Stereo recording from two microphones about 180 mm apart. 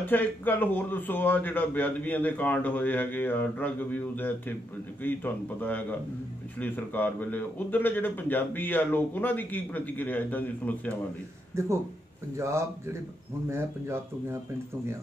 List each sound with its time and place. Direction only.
0.0 s speech: 10° left (ahead or behind)
11.5 s speech: 15° right (ahead or behind)